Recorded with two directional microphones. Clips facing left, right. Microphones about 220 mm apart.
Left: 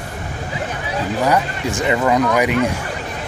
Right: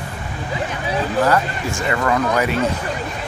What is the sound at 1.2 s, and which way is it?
Speech, 15° left (ahead or behind).